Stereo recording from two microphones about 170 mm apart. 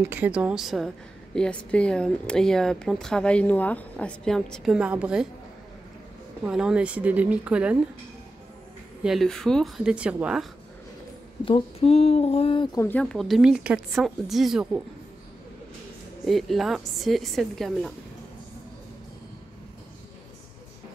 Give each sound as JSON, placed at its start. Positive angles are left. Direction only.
{"t": 0.1, "sound": "a woman's voice", "side_deg": -10}
{"t": 6.4, "sound": "a woman's voice", "side_deg": -5}
{"t": 9.0, "sound": "a woman's voice", "side_deg": 0}
{"t": 11.4, "sound": "speech", "side_deg": 35}
{"t": 12.7, "sound": "a woman's voice", "side_deg": 10}
{"t": 16.3, "sound": "a woman's voice", "side_deg": 0}